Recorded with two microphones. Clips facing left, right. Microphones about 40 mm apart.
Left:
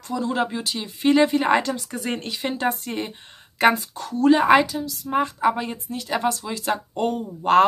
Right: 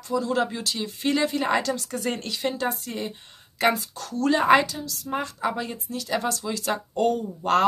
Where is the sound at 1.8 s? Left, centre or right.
Centre.